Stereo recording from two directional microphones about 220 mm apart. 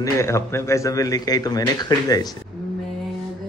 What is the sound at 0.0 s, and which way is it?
Mantra, 15° left (ahead or behind).